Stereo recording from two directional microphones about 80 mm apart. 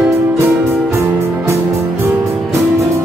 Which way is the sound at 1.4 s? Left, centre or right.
Right.